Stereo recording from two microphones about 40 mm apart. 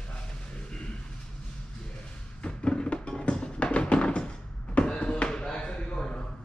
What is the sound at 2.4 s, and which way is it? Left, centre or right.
Music, left.